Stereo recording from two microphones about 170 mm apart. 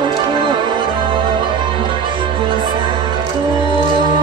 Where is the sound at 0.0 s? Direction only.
30° right (ahead or behind).